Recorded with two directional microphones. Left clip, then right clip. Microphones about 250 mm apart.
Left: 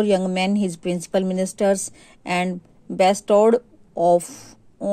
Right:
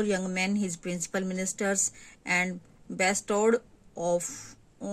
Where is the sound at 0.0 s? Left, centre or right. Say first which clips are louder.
Left 9 dB; left.